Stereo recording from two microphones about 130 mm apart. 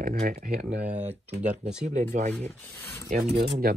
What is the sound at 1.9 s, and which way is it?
Speech, 65° right (ahead or behind).